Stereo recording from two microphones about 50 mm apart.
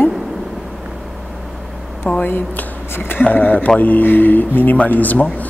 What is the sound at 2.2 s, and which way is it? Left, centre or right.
Speech, left.